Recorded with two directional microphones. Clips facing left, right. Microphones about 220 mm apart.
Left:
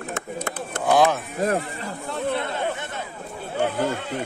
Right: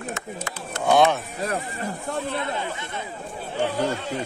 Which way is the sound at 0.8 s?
Centre (ahead or behind).